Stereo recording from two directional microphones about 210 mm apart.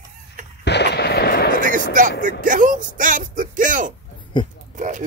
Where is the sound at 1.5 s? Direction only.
40° right (ahead or behind).